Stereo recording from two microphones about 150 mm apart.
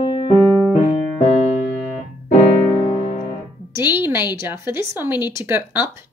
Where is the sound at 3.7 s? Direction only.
15° right (ahead or behind).